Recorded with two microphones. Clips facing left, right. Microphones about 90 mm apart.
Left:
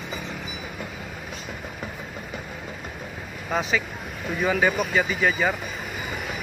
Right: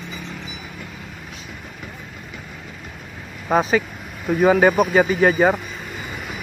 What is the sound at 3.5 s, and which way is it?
Speech, 45° right (ahead or behind).